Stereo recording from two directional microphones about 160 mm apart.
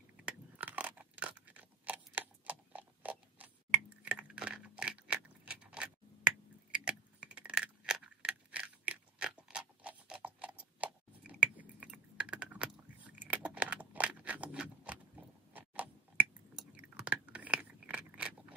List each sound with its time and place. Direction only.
0.2 s a sound: 10° right (ahead or behind)
4.0 s keys jangling: 5° right (ahead or behind)
15.5 s chewing: 10° right (ahead or behind)